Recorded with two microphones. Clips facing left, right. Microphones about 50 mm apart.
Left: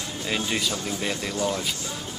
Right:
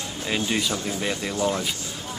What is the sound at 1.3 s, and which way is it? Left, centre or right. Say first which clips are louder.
Speech: right 3 dB; centre.